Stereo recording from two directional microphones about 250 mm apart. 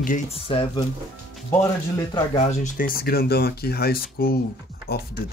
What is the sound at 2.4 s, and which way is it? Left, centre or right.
Speech, left.